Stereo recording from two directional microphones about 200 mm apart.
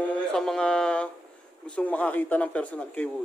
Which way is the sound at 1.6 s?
5° left (ahead or behind).